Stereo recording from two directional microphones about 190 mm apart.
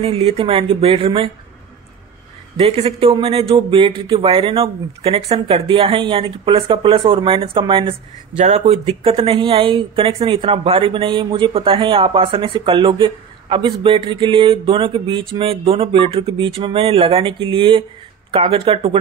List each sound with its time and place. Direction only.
0.0 s speech: 30° right (ahead or behind)
2.5 s speech: 30° right (ahead or behind)